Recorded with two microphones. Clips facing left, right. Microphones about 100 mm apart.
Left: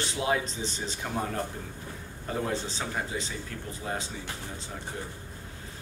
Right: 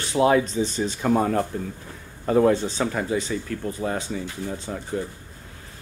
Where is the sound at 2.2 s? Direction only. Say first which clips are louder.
Right 13 dB; 90° right.